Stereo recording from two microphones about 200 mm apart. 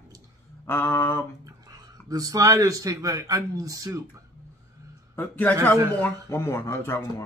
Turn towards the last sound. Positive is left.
turn(degrees=10)  # may be behind; listen again after turning